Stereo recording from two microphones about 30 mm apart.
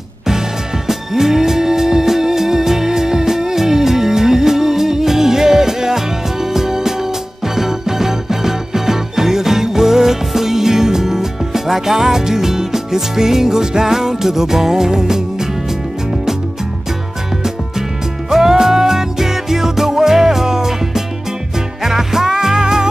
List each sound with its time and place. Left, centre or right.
0.8 s music: centre
18.3 s music: centre